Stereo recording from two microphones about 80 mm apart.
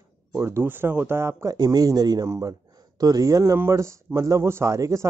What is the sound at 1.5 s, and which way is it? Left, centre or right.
Speech, right.